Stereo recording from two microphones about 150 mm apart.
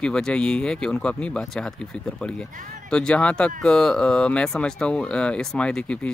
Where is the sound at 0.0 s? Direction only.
5° left (ahead or behind).